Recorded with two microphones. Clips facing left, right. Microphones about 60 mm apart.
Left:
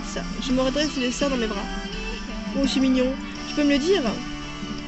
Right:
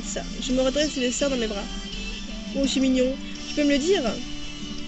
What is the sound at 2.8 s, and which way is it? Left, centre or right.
Speech, left.